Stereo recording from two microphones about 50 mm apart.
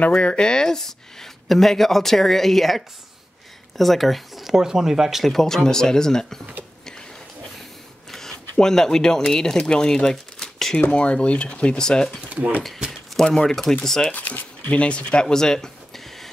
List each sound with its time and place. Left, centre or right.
0.0 s speech: left; by 5.3 s centre
5.3 s speech: centre
8.1 s speech: centre
12.3 s speech: right
13.1 s speech: centre
14.1 s speech: left; by 16.3 s centre